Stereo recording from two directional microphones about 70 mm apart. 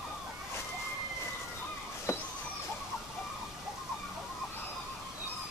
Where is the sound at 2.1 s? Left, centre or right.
Left.